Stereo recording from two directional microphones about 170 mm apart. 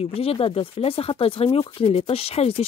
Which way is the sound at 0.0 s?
35° left (ahead or behind).